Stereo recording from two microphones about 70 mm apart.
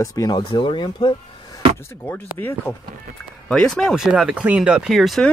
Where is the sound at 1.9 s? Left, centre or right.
Left.